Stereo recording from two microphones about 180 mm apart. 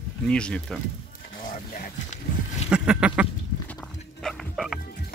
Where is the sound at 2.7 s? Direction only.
5° right (ahead or behind).